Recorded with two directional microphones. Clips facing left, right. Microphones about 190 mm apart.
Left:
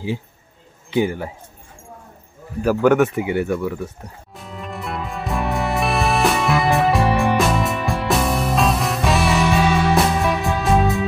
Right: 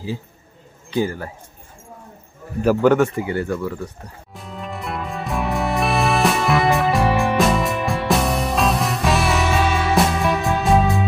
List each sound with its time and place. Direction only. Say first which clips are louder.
0.9 s speech: left 2 dB; 20° left (ahead or behind)
2.6 s speech: even; 5° left (ahead or behind)
3.2 s speech: left 2 dB; 15° left (ahead or behind)
4.3 s music: right 1 dB; centre (ahead or behind)